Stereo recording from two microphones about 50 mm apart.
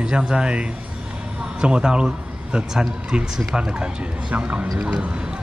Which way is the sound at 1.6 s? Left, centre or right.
Right.